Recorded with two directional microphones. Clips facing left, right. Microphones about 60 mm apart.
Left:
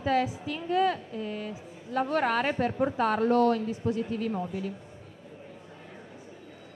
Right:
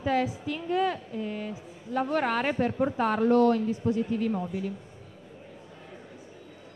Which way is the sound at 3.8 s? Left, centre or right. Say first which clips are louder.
Right 1 dB; centre.